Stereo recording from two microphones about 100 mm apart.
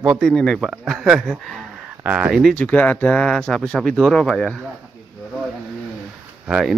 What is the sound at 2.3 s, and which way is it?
Speech, centre (ahead or behind).